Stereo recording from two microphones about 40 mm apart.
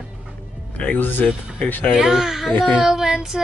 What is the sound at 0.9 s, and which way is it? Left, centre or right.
Speech, left.